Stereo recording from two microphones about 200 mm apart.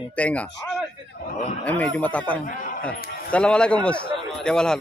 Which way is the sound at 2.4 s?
40° left (ahead or behind).